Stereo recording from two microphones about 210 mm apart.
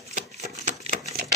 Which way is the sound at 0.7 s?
40° right (ahead or behind).